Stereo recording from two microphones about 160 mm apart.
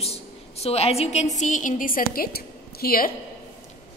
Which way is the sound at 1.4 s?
55° left (ahead or behind).